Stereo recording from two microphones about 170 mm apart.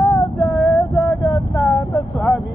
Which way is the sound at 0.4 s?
15° left (ahead or behind).